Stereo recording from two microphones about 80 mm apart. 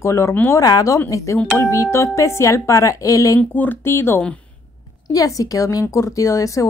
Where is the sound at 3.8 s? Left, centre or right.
Left.